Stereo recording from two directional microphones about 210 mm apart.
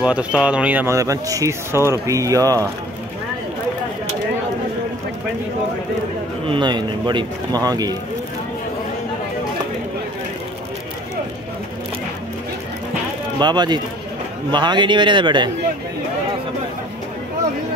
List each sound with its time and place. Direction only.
0.0 s speech: 5° right (ahead or behind)
6.4 s a man's voice: 20° right (ahead or behind)
13.4 s a man's voice: 20° right (ahead or behind)